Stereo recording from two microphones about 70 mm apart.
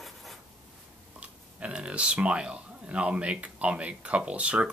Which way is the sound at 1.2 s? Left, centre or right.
Centre.